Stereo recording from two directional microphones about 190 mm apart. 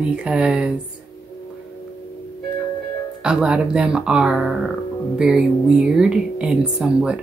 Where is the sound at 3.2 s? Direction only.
5° right (ahead or behind).